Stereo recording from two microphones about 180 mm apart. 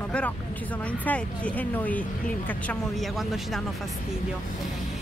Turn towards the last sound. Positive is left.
turn(degrees=0)  # may be behind; listen again after turning